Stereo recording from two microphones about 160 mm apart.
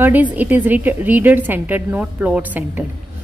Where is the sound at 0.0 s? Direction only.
10° right (ahead or behind).